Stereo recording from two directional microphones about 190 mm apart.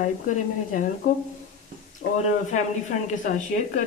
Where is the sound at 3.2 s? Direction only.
40° left (ahead or behind).